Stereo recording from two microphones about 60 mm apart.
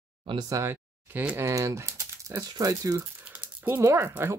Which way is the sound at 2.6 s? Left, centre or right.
Right.